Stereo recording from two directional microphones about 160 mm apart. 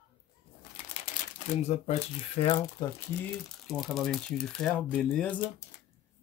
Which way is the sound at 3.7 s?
Centre (ahead or behind).